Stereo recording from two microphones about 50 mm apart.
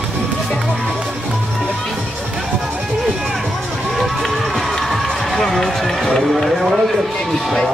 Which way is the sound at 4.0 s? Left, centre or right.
Centre.